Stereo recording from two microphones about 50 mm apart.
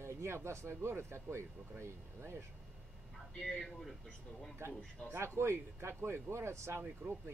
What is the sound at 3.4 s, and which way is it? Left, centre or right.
Speech, centre.